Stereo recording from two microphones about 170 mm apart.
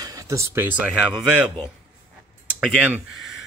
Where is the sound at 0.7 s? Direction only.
5° right (ahead or behind).